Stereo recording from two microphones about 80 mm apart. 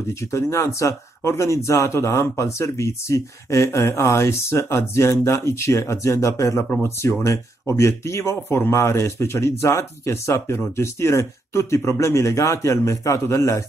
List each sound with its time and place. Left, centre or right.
0.1 s speech: left
6.7 s speech: left